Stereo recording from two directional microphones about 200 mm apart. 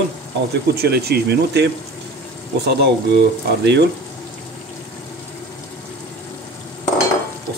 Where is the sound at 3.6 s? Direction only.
55° right (ahead or behind).